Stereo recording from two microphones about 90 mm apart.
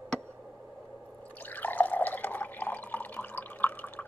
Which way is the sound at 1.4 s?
20° left (ahead or behind).